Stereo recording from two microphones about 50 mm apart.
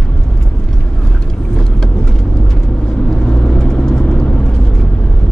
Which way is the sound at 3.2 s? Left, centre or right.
Centre.